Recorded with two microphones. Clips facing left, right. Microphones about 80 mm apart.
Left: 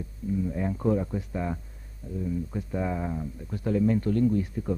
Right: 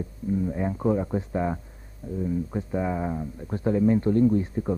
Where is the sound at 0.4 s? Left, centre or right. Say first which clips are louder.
Right 2 dB; right.